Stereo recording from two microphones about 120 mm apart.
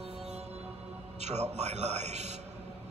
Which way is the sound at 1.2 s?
65° right (ahead or behind).